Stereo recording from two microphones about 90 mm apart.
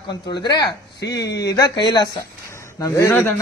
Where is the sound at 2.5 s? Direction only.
35° left (ahead or behind).